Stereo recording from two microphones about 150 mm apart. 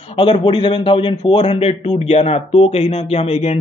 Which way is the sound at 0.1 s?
35° left (ahead or behind).